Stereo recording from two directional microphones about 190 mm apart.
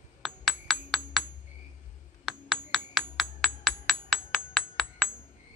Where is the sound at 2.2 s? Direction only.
5° right (ahead or behind).